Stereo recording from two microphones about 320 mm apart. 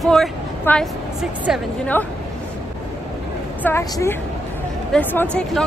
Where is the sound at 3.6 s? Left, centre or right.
Centre.